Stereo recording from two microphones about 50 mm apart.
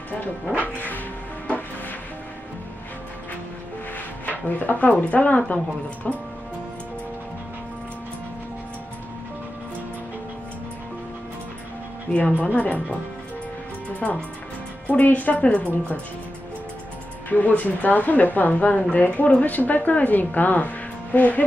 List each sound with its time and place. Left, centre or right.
0.7 s a woman's voice: left
4.3 s a woman's voice: left
12.1 s speech: left
14.0 s speech: left
14.9 s a woman's voice: left
17.3 s a woman's voice: left